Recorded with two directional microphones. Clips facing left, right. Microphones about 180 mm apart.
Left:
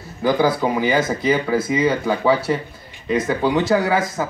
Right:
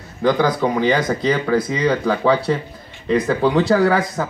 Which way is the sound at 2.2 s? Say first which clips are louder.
Even; 5° left (ahead or behind).